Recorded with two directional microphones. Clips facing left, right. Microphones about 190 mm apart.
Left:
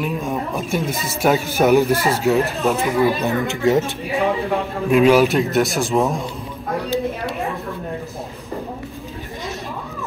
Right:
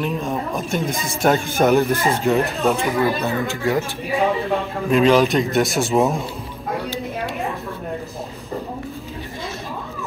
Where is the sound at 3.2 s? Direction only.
15° left (ahead or behind).